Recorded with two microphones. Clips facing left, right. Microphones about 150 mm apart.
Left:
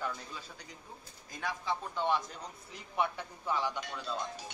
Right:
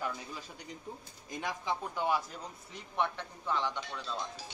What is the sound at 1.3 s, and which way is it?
Speech, 20° right (ahead or behind).